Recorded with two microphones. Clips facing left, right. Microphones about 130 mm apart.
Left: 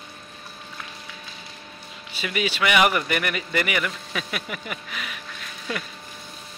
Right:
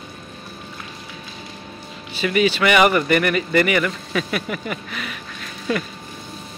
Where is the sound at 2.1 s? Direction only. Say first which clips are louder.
Right 9 dB; 5° left (ahead or behind).